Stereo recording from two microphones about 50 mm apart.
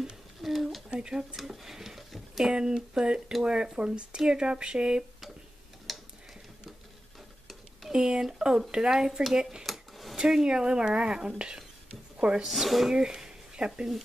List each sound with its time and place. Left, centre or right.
0.4 s a sound: centre
0.8 s speech: centre
1.3 s speech: centre
2.5 s speech: centre
5.9 s tick-tock: centre
7.9 s speech: centre
9.6 s a sound: centre
10.1 s speech: centre
12.4 s speech: centre
12.9 s a sound: centre